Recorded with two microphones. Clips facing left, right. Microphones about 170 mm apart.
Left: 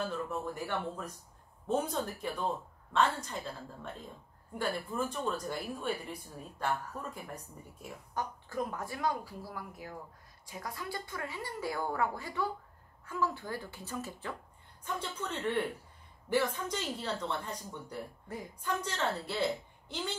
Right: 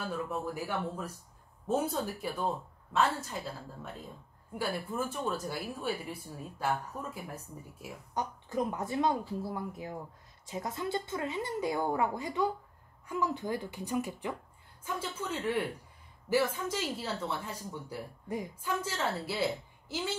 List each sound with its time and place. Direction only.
0.1 s a woman's voice: 10° right (ahead or behind)
8.1 s a woman's voice: 20° right (ahead or behind)
18.3 s speech: 20° right (ahead or behind)
18.6 s a woman's voice: 5° right (ahead or behind)